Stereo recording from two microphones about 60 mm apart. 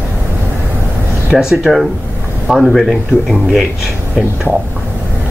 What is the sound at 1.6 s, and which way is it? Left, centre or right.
Speech, centre.